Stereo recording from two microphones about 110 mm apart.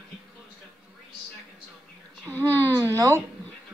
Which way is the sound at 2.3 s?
20° left (ahead or behind).